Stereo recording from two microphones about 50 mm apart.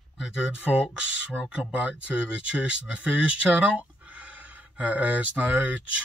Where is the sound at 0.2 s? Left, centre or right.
Centre.